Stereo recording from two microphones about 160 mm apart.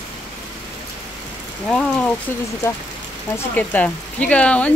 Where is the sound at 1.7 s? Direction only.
5° left (ahead or behind).